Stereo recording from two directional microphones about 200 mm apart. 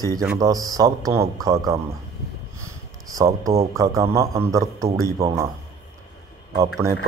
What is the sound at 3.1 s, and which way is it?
Speech, 15° right (ahead or behind).